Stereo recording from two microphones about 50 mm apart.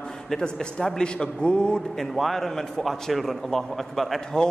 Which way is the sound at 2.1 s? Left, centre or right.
Centre.